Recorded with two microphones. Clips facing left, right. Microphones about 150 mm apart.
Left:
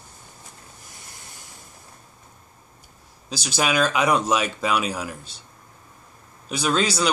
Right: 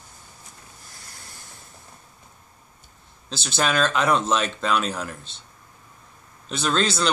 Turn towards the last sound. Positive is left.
turn(degrees=10)  # may be behind; listen again after turning